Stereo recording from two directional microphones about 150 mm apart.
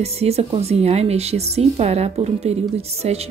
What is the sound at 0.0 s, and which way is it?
A woman's voice, 45° right (ahead or behind).